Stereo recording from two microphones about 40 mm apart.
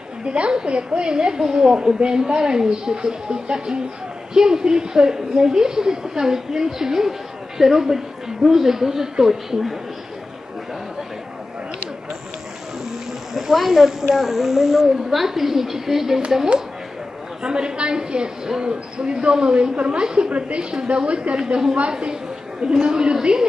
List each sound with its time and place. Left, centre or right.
0.2 s a woman's voice: right; by 9.8 s centre
13.3 s a woman's voice: centre
17.4 s a woman's voice: right
21.4 s a woman's voice: centre